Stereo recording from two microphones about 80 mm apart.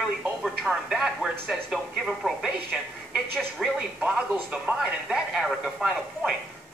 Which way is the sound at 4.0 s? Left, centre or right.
Centre.